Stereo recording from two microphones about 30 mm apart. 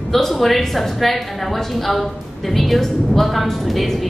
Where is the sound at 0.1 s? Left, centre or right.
Centre.